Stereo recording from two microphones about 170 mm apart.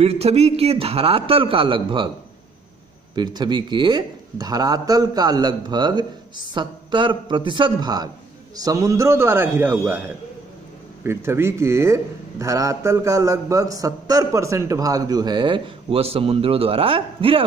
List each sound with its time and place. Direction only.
0.0 s a man's voice: 35° right (ahead or behind)
3.2 s a man's voice: 25° right (ahead or behind)